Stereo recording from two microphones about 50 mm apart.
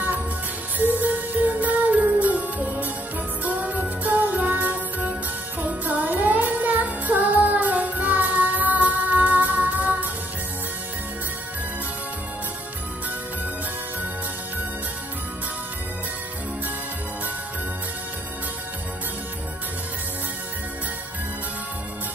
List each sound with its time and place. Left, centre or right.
0.7 s music: right